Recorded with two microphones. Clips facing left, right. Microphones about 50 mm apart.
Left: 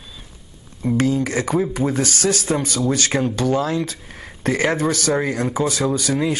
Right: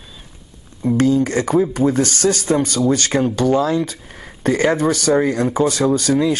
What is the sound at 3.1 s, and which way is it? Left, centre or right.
A man's voice, centre.